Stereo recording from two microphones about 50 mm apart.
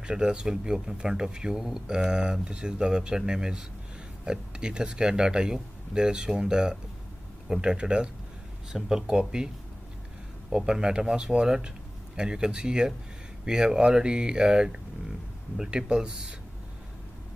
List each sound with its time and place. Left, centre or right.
0.0 s speech: centre
10.5 s speech: centre